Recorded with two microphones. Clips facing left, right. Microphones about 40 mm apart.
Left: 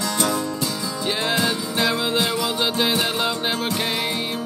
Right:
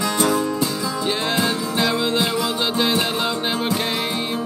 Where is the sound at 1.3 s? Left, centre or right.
Centre.